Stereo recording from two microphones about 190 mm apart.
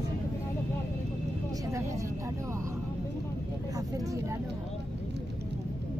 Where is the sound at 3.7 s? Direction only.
20° right (ahead or behind).